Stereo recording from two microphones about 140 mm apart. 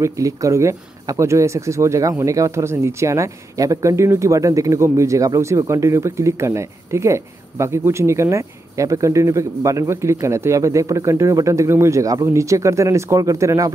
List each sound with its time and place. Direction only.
0.0 s speech: 20° right (ahead or behind)